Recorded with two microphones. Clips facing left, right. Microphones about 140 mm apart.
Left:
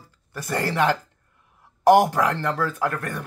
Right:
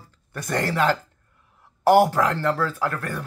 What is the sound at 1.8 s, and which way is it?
Speech, 15° left (ahead or behind).